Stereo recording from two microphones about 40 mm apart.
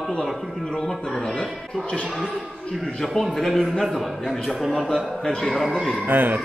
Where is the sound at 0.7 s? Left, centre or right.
Centre.